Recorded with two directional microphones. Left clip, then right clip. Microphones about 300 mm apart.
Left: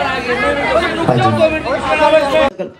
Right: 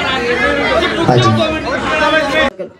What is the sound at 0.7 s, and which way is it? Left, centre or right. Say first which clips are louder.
Chatter: right 1 dB; left.